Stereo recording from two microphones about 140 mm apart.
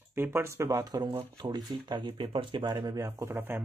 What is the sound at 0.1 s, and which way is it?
Speech, 15° right (ahead or behind).